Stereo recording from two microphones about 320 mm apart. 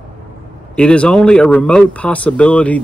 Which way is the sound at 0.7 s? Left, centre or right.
Centre.